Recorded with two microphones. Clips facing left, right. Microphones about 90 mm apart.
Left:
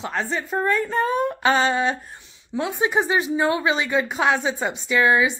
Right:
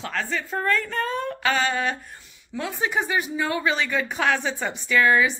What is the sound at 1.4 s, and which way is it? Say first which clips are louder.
Speech: left 3 dB; 30° left (ahead or behind).